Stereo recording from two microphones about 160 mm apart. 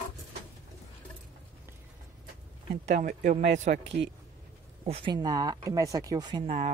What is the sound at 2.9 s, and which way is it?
Speech, 50° right (ahead or behind).